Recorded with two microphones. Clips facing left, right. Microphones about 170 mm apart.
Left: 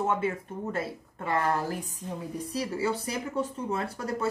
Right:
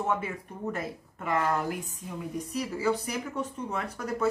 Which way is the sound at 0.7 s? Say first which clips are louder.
Left 3 dB; 30° left (ahead or behind).